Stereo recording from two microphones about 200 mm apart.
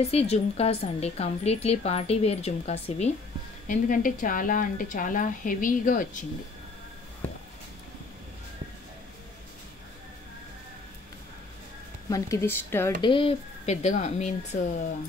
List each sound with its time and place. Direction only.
0.0 s a woman's voice: 30° left (ahead or behind)
12.1 s speech: 15° left (ahead or behind)
13.0 s a woman's voice: 25° left (ahead or behind)